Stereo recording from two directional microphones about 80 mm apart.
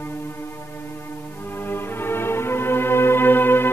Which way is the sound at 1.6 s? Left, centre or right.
Left.